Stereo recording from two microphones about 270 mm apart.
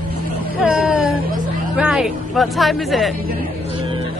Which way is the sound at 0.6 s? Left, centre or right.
Centre.